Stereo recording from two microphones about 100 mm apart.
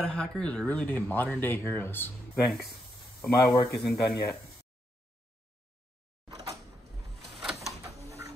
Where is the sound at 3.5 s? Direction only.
35° left (ahead or behind).